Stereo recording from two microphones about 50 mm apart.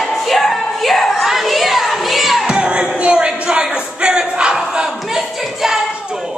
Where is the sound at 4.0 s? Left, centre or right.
Centre.